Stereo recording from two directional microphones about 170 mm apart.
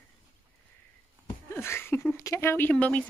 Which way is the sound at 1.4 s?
15° left (ahead or behind).